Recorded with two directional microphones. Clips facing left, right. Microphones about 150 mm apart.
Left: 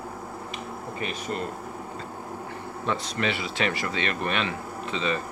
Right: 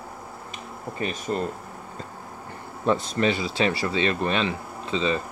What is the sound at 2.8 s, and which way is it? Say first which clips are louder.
Speech: right 6 dB; 40° right (ahead or behind).